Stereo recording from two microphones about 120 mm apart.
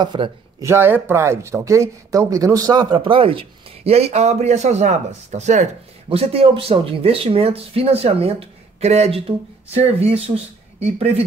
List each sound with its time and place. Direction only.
0.0 s speech: 40° right (ahead or behind)
0.6 s speech: 20° right (ahead or behind); by 5.7 s 80° right
6.0 s speech: 50° right (ahead or behind)